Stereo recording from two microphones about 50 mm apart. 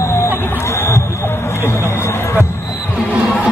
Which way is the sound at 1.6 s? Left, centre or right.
Left.